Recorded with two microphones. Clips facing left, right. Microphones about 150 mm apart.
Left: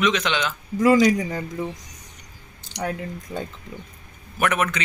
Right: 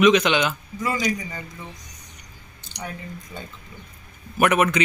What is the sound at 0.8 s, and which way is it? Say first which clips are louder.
Speech: left 10 dB; 90° left.